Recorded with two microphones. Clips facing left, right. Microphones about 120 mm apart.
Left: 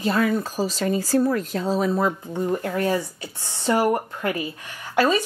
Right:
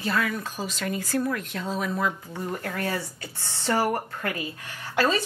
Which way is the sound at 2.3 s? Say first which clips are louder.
Left 7 dB; 20° left (ahead or behind).